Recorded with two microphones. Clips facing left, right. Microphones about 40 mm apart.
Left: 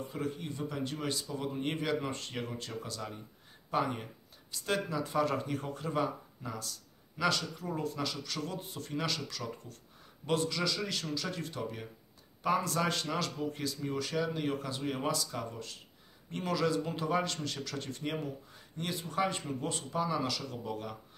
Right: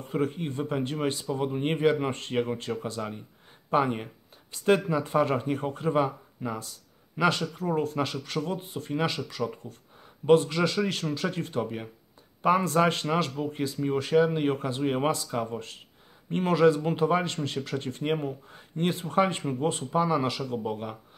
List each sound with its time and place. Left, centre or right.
0.1 s speech: right